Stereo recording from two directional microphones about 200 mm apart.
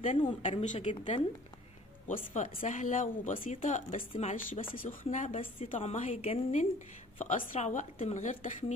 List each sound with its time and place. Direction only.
0.2 s speech: 30° left (ahead or behind)